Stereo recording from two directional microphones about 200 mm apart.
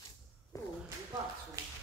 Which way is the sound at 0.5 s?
15° left (ahead or behind).